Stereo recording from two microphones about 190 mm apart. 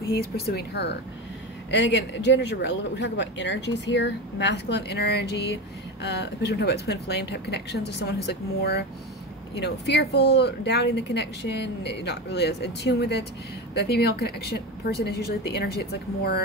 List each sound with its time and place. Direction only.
0.2 s speech: 60° left (ahead or behind)